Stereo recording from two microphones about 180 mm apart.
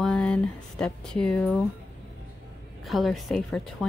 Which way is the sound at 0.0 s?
5° left (ahead or behind).